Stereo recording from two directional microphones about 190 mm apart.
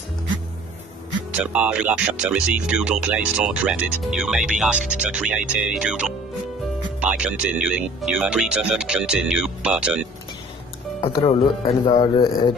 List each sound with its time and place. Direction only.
1.4 s speech: 5° right (ahead or behind)
11.0 s speech: 30° left (ahead or behind)